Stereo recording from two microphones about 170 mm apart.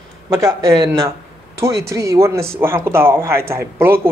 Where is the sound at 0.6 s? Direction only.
20° right (ahead or behind).